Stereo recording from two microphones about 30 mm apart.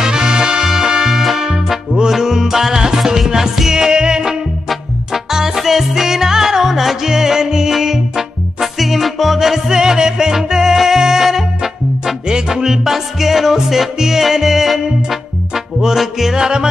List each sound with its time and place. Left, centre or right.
0.0 s music: right
8.7 s music: centre
12.3 s music: right
12.6 s music: centre
16.0 s music: centre